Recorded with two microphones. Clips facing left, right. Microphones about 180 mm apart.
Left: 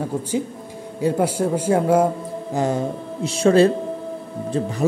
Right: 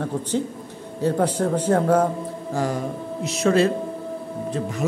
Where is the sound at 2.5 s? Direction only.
20° left (ahead or behind).